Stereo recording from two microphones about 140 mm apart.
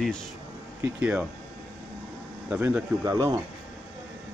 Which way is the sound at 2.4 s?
10° right (ahead or behind).